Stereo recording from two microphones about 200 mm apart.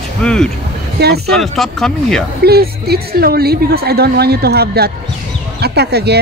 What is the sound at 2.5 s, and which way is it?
A woman's voice, 50° right (ahead or behind).